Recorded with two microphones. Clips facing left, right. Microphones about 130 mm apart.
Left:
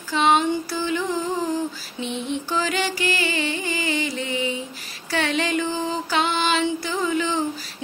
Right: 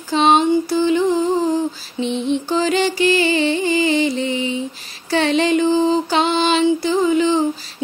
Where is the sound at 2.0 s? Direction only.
25° right (ahead or behind).